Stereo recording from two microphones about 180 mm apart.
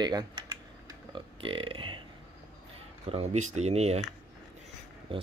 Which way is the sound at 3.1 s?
40° right (ahead or behind).